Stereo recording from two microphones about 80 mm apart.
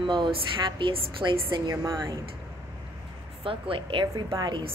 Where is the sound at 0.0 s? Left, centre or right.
Right.